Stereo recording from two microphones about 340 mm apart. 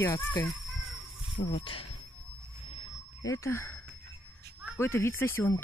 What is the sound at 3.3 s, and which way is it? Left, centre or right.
Speech, centre.